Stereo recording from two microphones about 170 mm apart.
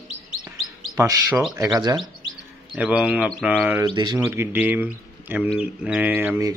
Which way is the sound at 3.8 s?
25° right (ahead or behind).